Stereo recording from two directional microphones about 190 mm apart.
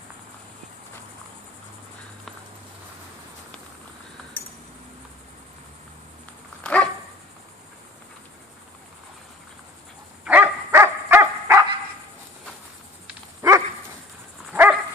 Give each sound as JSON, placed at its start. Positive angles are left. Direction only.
{"t": 6.6, "sound": "dog", "side_deg": 5}
{"t": 10.2, "sound": "dog", "side_deg": -10}
{"t": 13.4, "sound": "dog", "side_deg": -15}